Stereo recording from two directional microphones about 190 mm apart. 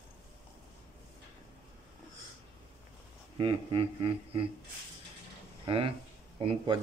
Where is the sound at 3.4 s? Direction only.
30° right (ahead or behind).